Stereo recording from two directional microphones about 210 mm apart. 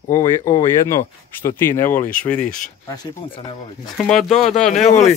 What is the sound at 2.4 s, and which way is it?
Speech, 40° left (ahead or behind).